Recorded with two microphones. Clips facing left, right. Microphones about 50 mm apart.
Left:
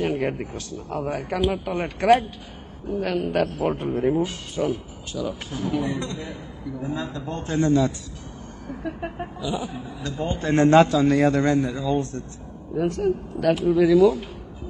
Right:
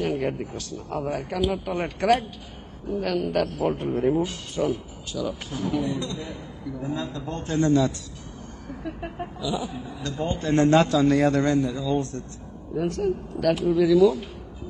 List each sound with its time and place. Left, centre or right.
0.0 s a man's voice: left
0.9 s speech: centre
1.3 s a man's voice: left
3.9 s speech: centre
5.8 s a man's voice: left
6.8 s a man's voice: left
10.4 s speech: left
10.9 s speech: centre
11.6 s a man's voice: left